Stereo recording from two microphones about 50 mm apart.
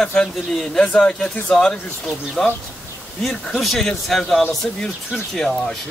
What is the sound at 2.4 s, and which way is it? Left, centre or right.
Speech, left.